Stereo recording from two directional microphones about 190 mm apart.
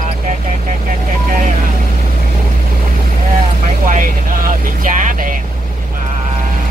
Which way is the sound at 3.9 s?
45° right (ahead or behind).